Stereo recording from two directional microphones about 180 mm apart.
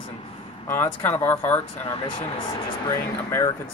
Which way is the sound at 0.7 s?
15° left (ahead or behind).